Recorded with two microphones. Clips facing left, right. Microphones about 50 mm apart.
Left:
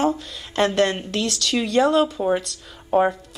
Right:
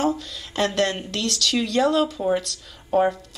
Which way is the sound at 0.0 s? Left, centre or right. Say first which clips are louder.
Left 2 dB; centre.